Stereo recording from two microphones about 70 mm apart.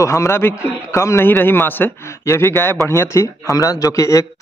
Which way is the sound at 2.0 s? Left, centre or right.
Left.